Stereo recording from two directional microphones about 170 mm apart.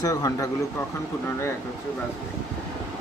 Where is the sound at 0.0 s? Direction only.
20° left (ahead or behind).